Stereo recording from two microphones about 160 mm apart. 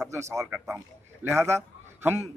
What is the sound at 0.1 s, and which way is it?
A man's voice, 20° right (ahead or behind).